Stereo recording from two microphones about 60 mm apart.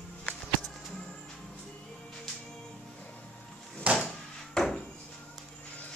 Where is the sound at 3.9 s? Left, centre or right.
Right.